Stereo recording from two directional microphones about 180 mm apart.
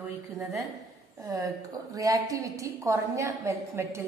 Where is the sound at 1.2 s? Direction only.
20° right (ahead or behind).